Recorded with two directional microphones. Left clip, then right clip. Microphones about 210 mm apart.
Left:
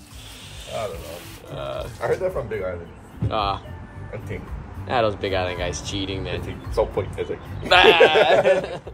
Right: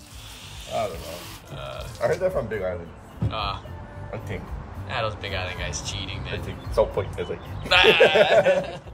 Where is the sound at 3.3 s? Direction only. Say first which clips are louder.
Left 6 dB; centre (ahead or behind).